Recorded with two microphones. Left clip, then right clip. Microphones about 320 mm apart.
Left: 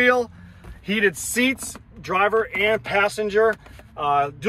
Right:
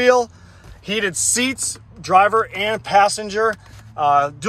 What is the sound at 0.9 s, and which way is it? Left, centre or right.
Speech, centre.